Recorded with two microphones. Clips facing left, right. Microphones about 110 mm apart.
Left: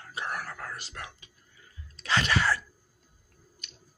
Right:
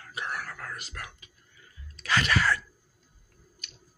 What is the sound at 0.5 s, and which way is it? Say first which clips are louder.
Whispering: even; 30° left (ahead or behind).